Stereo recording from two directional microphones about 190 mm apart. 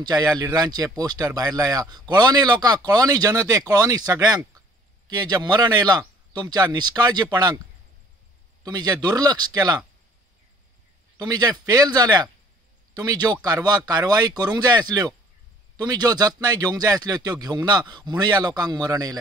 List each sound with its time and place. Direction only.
0.0 s speech: 20° right (ahead or behind)
8.6 s speech: 20° right (ahead or behind)
11.1 s speech: 20° right (ahead or behind)